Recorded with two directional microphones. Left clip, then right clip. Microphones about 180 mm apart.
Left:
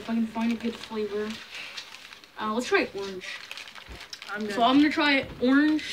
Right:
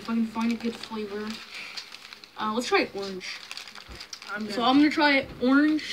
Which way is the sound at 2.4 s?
20° right (ahead or behind).